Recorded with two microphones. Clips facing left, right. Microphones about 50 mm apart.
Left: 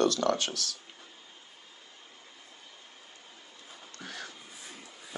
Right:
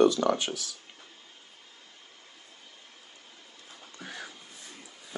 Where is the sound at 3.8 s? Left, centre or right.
Centre.